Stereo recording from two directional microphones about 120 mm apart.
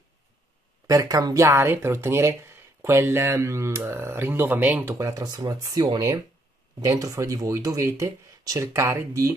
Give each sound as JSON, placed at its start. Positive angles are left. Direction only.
{"t": 0.8, "sound": "speech", "side_deg": -30}